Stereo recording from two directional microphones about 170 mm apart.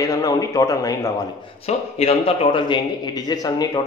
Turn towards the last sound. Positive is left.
turn(degrees=20)  # may be behind; listen again after turning